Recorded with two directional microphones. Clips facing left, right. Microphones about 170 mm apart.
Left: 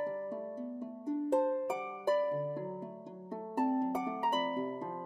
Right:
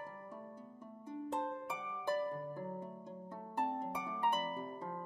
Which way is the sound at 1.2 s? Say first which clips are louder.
Left 10 dB; 45° left (ahead or behind).